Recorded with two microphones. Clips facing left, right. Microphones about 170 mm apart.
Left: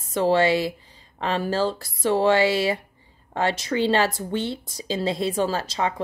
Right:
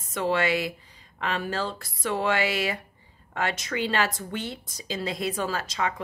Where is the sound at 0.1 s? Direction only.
35° left (ahead or behind).